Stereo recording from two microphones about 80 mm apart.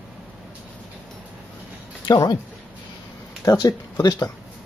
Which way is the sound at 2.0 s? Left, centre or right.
Left.